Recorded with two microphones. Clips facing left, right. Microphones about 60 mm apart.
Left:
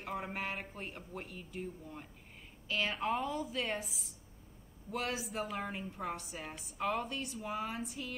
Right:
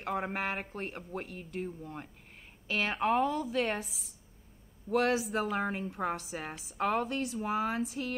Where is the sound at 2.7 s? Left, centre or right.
Right.